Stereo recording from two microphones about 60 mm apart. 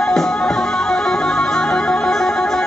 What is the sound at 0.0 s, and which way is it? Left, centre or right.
Music, centre.